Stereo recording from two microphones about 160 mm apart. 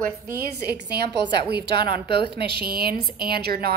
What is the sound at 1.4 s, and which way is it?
Speech, 90° right.